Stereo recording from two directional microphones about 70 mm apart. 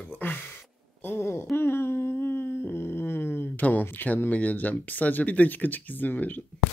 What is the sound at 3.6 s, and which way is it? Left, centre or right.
Speech, left.